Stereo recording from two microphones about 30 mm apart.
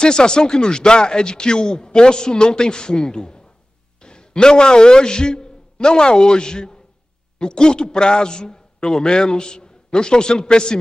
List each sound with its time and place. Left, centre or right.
0.0 s a man's voice: left